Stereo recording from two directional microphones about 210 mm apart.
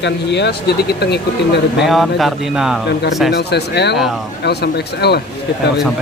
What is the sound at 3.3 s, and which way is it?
Speech, 50° left (ahead or behind).